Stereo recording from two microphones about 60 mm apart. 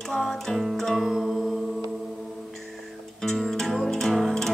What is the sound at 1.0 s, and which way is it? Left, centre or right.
Music, centre.